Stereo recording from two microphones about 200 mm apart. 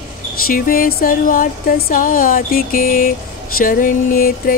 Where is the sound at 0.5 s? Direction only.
45° left (ahead or behind).